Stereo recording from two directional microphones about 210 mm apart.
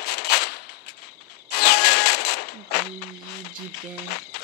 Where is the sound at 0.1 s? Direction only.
50° left (ahead or behind).